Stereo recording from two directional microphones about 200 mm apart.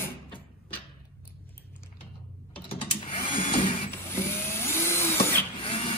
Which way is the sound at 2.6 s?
30° left (ahead or behind).